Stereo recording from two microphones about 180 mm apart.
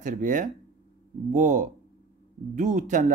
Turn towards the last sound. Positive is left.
turn(degrees=-45)  # may be behind; listen again after turning